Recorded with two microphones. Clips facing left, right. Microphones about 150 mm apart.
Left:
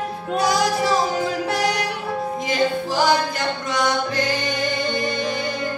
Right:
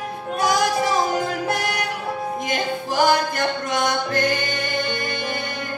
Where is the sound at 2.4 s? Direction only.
50° right (ahead or behind).